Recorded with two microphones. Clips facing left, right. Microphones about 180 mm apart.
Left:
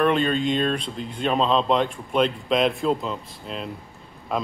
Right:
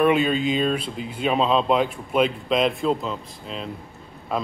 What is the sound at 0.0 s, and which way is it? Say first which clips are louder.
Speech: right 2 dB; 5° right (ahead or behind).